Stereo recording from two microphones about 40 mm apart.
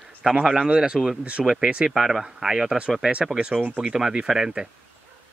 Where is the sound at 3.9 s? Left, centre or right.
Centre.